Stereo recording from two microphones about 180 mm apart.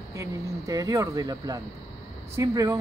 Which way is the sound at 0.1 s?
15° right (ahead or behind).